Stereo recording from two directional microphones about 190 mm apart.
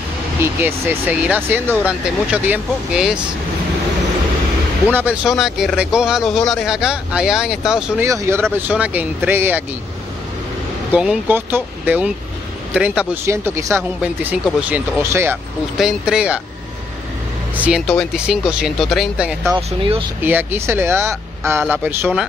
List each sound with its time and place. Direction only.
0.4 s speech: 10° right (ahead or behind)
4.9 s speech: 5° right (ahead or behind)
8.0 s speech: 15° right (ahead or behind)
10.9 s speech: 5° right (ahead or behind)
17.6 s speech: 5° right (ahead or behind)
19.5 s speech: 25° right (ahead or behind)
20.2 s speech: 10° right (ahead or behind)